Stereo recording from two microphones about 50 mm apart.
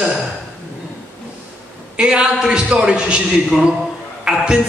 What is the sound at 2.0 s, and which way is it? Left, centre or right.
A man's voice, centre.